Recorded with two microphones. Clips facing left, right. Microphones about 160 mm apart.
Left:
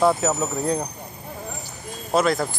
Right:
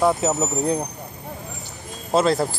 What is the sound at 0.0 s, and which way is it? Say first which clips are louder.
Speech: even; 20° right (ahead or behind).